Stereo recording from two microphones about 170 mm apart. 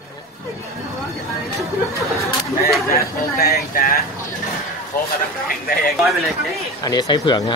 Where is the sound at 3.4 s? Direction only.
65° left (ahead or behind).